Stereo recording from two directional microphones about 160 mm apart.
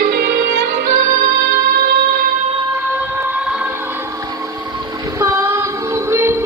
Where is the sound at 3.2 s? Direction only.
10° right (ahead or behind).